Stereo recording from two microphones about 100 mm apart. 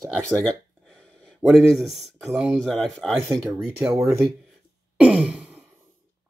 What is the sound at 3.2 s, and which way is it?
Speech, 25° right (ahead or behind).